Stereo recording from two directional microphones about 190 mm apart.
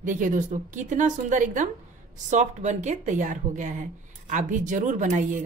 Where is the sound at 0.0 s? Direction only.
45° right (ahead or behind).